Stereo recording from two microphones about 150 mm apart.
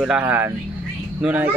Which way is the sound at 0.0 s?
10° right (ahead or behind).